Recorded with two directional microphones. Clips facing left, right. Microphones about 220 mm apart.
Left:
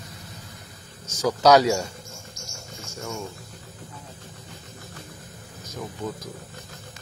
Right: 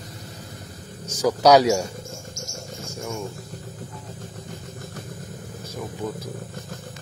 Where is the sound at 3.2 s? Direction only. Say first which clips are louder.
Right 4 dB; 45° right (ahead or behind).